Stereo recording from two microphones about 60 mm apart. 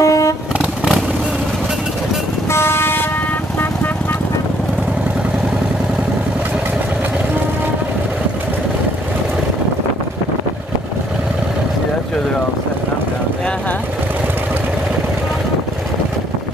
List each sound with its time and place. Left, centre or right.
0.0 s vehicle: left
2.5 s vehicle: left